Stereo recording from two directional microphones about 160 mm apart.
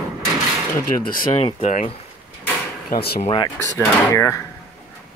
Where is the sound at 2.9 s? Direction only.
75° left (ahead or behind).